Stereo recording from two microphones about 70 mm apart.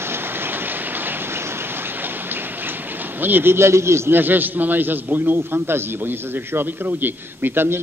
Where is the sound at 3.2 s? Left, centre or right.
Right.